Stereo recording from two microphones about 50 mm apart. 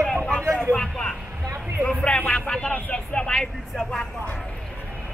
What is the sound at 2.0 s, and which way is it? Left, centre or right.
Music, left.